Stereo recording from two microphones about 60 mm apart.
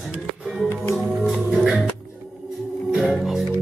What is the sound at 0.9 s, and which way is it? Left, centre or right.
Music, centre.